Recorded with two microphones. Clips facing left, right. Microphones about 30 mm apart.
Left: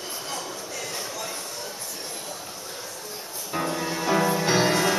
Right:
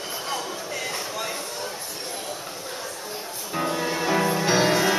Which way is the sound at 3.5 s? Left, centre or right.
Centre.